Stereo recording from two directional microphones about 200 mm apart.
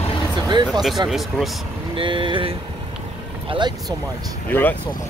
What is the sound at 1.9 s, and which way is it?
Speech, 25° right (ahead or behind).